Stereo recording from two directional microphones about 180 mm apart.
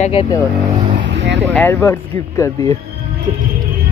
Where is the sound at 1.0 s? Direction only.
75° right (ahead or behind).